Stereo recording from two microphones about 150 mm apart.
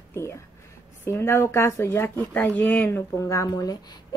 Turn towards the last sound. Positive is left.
turn(degrees=25)  # may be behind; listen again after turning